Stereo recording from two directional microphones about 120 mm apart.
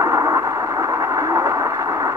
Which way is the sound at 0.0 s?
25° right (ahead or behind).